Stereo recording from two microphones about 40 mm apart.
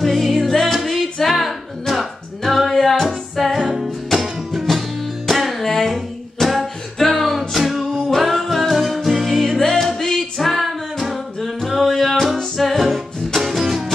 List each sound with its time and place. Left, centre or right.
0.0 s music: centre
3.5 s music: centre
5.3 s music: centre